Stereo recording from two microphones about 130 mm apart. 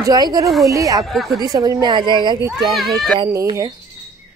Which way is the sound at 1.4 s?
30° right (ahead or behind).